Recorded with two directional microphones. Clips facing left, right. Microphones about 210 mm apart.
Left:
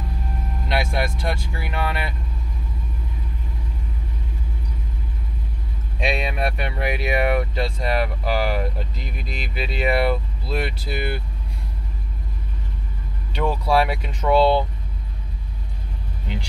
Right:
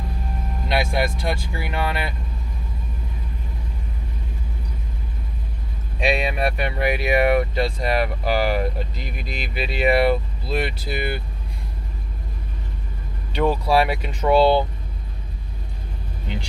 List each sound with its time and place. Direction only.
0.7 s speech: centre (ahead or behind)
5.9 s speech: 5° right (ahead or behind)
13.3 s speech: 5° right (ahead or behind)